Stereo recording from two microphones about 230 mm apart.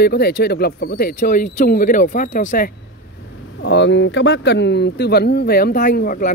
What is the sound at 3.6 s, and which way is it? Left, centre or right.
Speech, left.